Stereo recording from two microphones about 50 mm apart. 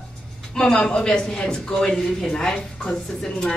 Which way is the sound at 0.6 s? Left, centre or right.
Centre.